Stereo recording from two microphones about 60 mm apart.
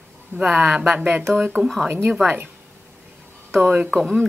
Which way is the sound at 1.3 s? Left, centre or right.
Right.